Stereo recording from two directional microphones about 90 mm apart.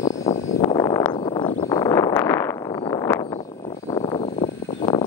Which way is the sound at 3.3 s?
80° left.